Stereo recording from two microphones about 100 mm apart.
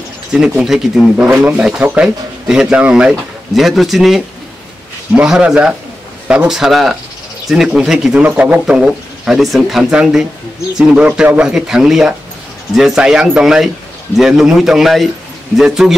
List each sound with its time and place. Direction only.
0.3 s speech: 5° right (ahead or behind)
8.3 s speech: 20° right (ahead or behind)
8.6 s speech: 5° right (ahead or behind)